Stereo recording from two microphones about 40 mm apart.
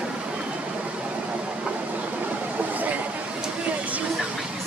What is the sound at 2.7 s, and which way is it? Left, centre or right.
Chatter, right.